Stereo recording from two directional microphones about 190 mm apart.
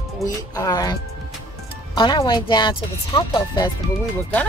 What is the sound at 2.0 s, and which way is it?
Speech, 25° left (ahead or behind).